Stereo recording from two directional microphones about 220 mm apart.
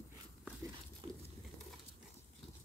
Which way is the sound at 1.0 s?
25° right (ahead or behind).